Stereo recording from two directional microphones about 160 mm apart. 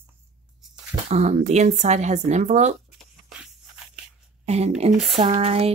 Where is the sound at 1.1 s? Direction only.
45° right (ahead or behind).